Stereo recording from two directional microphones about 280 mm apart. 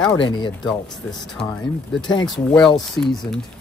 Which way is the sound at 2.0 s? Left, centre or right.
Centre.